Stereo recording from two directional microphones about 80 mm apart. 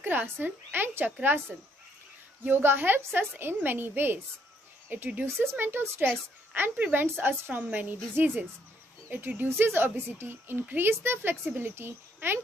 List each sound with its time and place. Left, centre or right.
0.0 s a child's voice: right
2.4 s a child's voice: right